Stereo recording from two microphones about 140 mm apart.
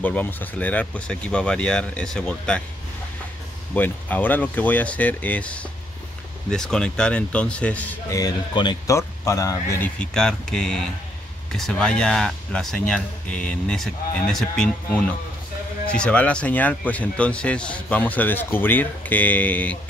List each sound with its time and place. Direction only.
0.0 s speech: 10° left (ahead or behind)
3.7 s speech: 10° left (ahead or behind)
8.1 s speech: 25° left (ahead or behind)
9.9 s speech: 5° left (ahead or behind)